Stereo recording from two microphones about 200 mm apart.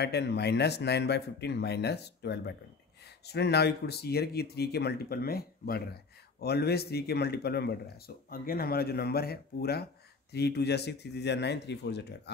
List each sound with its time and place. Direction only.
0.0 s speech: 55° left (ahead or behind)